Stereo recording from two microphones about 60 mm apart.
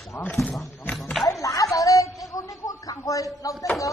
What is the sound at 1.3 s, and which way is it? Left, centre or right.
Music, left.